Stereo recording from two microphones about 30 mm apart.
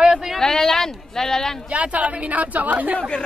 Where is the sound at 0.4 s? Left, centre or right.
Centre.